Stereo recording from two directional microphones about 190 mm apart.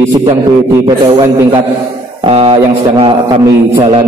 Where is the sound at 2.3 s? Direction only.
30° right (ahead or behind).